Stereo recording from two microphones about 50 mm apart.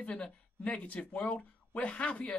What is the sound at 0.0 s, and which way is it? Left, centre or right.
Speech, left.